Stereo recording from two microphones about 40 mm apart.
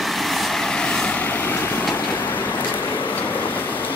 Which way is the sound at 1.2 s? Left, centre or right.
Left.